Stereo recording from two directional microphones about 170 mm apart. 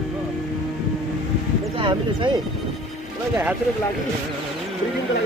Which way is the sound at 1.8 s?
30° right (ahead or behind).